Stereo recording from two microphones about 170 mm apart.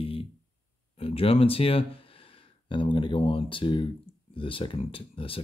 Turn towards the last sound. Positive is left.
turn(degrees=30)  # may be behind; listen again after turning